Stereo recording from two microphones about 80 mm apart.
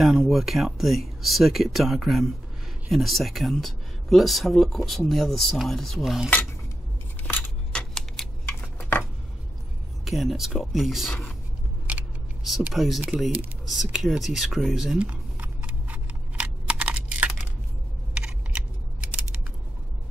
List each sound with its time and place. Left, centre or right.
0.0 s speech: centre
7.2 s a sound: left
7.7 s typewriter: centre
8.5 s a sound: left
10.0 s speech: centre
12.7 s speech: centre
15.0 s camera: centre